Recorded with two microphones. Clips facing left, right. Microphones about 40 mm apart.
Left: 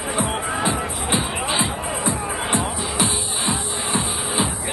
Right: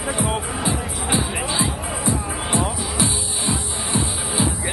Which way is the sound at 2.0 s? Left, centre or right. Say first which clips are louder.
Right 2 dB; centre.